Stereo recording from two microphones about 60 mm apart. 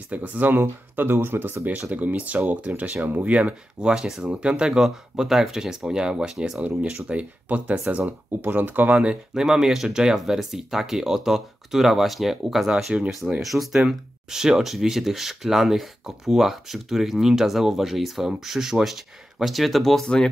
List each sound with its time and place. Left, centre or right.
0.1 s speech: right
3.9 s speech: centre
4.3 s speech: centre
9.3 s speech: centre